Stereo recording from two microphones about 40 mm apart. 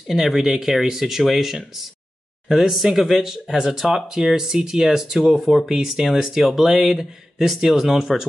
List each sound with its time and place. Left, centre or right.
0.1 s speech: centre